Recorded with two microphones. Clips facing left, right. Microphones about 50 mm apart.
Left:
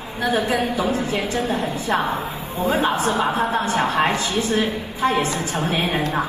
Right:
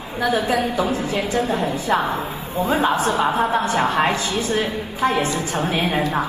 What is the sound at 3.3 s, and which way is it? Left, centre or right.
Speech, right.